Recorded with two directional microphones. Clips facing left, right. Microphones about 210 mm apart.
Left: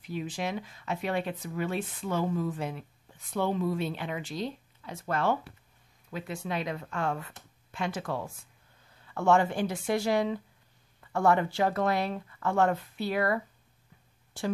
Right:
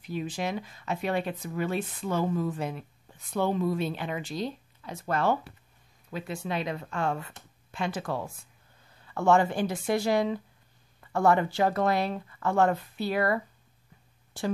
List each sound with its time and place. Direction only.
0.1 s speech: 40° right (ahead or behind)